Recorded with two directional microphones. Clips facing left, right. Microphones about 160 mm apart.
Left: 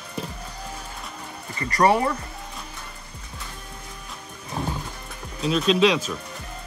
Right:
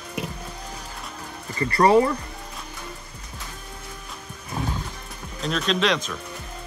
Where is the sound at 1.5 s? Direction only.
30° right (ahead or behind).